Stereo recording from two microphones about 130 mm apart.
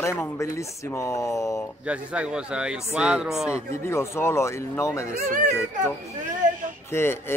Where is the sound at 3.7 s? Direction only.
20° left (ahead or behind).